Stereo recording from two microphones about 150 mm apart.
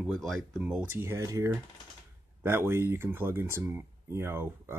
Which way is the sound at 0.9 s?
15° right (ahead or behind).